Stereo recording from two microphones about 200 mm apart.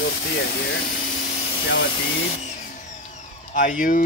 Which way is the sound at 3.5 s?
40° left (ahead or behind).